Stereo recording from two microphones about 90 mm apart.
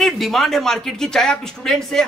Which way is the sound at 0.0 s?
5° left (ahead or behind).